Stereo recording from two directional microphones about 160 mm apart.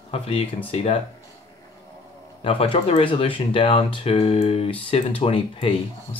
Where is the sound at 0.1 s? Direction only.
35° left (ahead or behind).